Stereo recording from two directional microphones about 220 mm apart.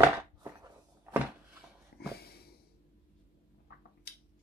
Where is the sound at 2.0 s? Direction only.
45° left (ahead or behind).